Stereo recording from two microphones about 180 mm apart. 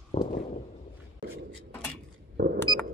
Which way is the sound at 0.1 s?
35° left (ahead or behind).